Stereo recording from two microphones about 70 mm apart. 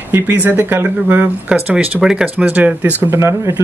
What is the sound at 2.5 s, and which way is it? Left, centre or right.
Speech, right.